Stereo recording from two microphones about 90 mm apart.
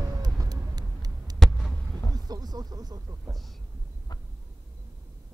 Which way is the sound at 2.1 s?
45° right (ahead or behind).